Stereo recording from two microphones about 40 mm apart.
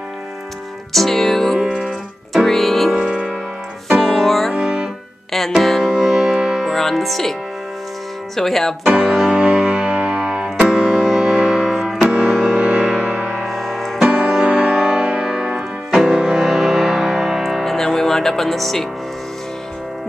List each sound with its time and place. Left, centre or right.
0.9 s music: centre
3.0 s music: centre
4.0 s music: centre
5.9 s music: centre
6.7 s music: centre
8.4 s speech: centre
9.3 s music: right
11.7 s music: centre
12.1 s music: centre
13.4 s music: centre
14.0 s music: right; by 17.6 s centre
17.6 s music: centre